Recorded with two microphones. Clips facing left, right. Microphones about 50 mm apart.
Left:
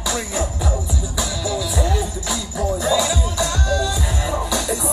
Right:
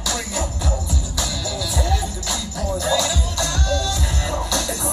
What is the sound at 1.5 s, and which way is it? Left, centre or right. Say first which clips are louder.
Music: left 2 dB; centre.